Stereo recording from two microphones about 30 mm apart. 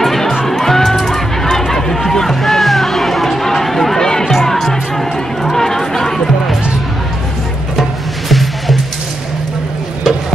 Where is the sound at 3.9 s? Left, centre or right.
Centre.